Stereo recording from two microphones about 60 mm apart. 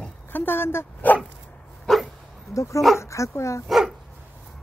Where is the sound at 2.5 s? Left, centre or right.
Left.